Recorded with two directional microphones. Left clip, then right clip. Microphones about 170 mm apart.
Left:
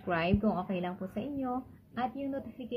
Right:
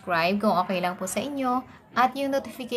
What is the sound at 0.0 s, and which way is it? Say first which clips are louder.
A woman's voice: right 7 dB; 20° right (ahead or behind).